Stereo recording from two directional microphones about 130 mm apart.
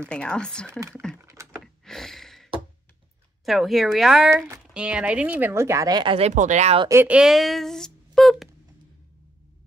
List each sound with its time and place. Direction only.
0.1 s speech: 5° left (ahead or behind)
0.7 s speech: 20° right (ahead or behind)
1.2 s a sound: 25° right (ahead or behind)
1.6 s a sound: centre (ahead or behind)
3.4 s speech: centre (ahead or behind)
4.3 s speech: 20° right (ahead or behind)
4.7 s a woman's voice: 10° right (ahead or behind); by 6.1 s 30° right (ahead or behind)
6.1 s speech: 65° right (ahead or behind)
6.9 s a woman's voice: 20° right (ahead or behind)
7.2 s speech: centre (ahead or behind)